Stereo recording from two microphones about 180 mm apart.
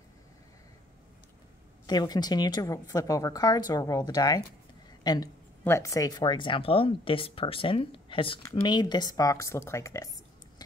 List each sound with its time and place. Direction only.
1.9 s a woman's voice: 25° left (ahead or behind)